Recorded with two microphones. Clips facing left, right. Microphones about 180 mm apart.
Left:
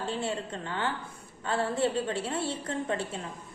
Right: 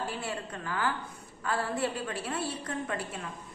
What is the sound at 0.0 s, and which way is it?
A woman's voice, 25° left (ahead or behind).